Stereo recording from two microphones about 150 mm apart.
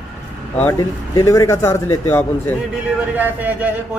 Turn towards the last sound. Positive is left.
turn(degrees=-10)  # may be behind; listen again after turning